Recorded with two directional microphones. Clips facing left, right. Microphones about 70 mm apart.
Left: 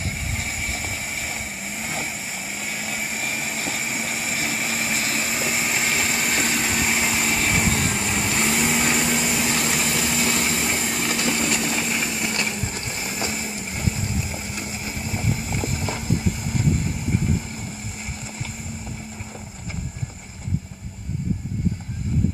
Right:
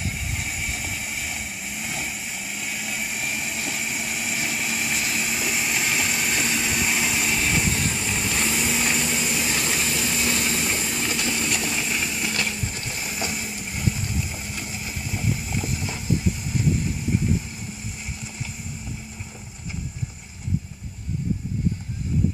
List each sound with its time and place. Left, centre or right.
0.6 s vehicle: left
9.6 s vehicle: centre
9.9 s vehicle: left
10.4 s vehicle: left
10.8 s vehicle: left
12.3 s vehicle: left
15.6 s vehicle: left